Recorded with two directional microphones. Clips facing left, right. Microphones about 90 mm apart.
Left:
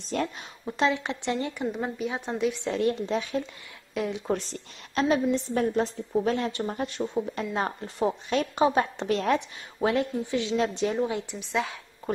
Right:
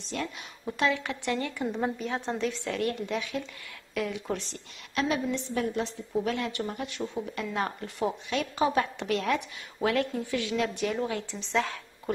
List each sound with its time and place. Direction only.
0.1 s a woman's voice: 45° left (ahead or behind)
0.7 s a woman's voice: 25° left (ahead or behind)
1.8 s a woman's voice: 5° left (ahead or behind); by 3.4 s 35° left (ahead or behind)
3.9 s speech: 20° left (ahead or behind)
4.3 s a woman's voice: 40° left (ahead or behind)
11.1 s speech: 15° left (ahead or behind)